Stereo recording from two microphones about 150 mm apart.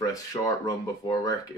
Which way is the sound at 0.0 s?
20° left (ahead or behind).